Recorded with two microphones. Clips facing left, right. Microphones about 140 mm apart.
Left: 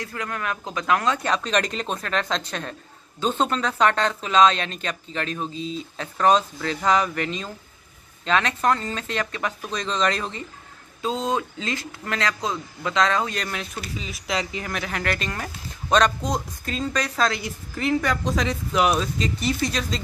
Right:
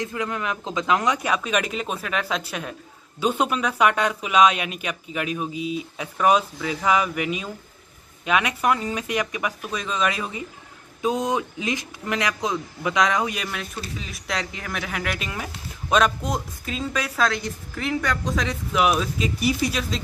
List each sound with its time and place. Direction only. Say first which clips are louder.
0.0 s speech: right 3 dB; 20° right (ahead or behind)
11.0 s speech: right 2 dB; 20° right (ahead or behind)
13.9 s speech: left 3 dB; centre (ahead or behind)